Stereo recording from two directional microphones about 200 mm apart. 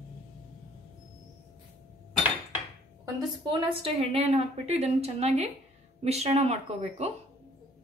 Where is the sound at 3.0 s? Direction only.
25° right (ahead or behind).